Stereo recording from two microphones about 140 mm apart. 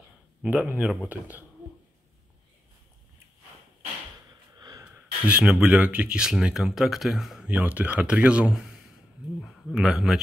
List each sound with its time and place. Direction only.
0.4 s speech: 10° right (ahead or behind)
4.6 s wheeze: 25° right (ahead or behind)
4.8 s speech: 10° right (ahead or behind)